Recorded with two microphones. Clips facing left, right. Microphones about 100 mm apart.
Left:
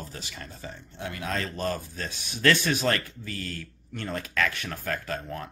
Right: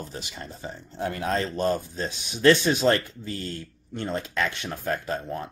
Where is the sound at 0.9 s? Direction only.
35° right (ahead or behind).